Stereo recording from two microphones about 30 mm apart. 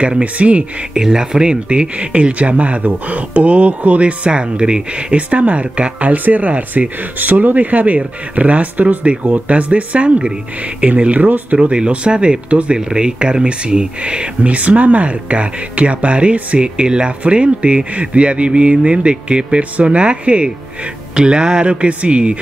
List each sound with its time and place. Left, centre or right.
0.2 s speech: right
0.9 s speech: right
4.3 s speech: right
6.0 s speech: right
11.1 s speech: right
11.5 s speech: right
14.4 s speech: right
21.1 s speech: right
21.8 s speech: right